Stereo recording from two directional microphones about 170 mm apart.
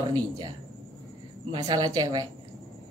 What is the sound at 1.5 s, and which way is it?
Speech, 25° right (ahead or behind).